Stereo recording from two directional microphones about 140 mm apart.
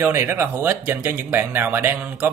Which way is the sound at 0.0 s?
15° right (ahead or behind).